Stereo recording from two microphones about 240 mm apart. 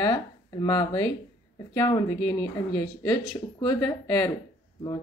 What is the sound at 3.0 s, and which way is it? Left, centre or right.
Speech, centre.